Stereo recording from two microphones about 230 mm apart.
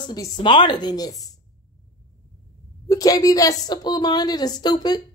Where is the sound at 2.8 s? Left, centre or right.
Centre.